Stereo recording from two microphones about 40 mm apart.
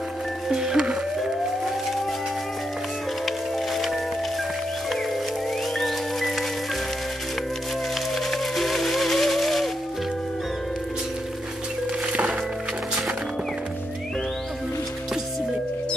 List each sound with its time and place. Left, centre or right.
0.5 s music: centre
3.3 s music: centre
5.8 s music: centre
8.1 s music: centre
12.1 s music: right